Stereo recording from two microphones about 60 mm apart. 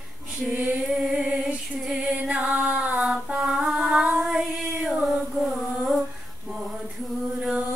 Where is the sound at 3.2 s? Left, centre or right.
Centre.